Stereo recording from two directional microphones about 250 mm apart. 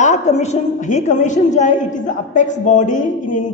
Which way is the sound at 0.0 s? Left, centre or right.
Left.